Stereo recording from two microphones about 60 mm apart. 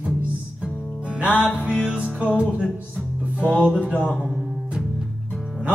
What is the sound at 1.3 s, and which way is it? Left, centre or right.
Music, centre.